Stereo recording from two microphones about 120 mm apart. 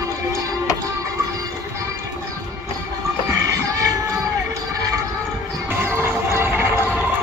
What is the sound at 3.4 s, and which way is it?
Music, 30° right (ahead or behind).